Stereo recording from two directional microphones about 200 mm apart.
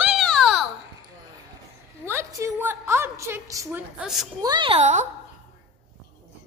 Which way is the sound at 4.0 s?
Centre (ahead or behind).